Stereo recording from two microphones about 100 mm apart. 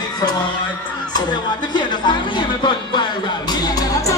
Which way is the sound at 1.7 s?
50° left (ahead or behind).